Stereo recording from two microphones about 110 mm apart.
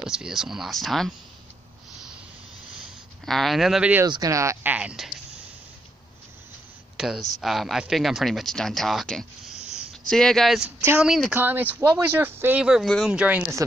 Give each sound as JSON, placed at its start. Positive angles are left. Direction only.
{"t": 0.0, "sound": "speech", "side_deg": -5}
{"t": 3.3, "sound": "speech", "side_deg": 0}
{"t": 4.1, "sound": "speech", "side_deg": -30}
{"t": 4.6, "sound": "speech", "side_deg": -10}
{"t": 7.0, "sound": "speech", "side_deg": -5}
{"t": 11.3, "sound": "speech", "side_deg": -15}
{"t": 12.8, "sound": "speech", "side_deg": 5}
{"t": 13.1, "sound": "speech", "side_deg": -10}